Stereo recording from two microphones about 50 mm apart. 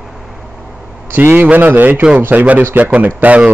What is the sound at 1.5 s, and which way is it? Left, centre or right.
Speech, right.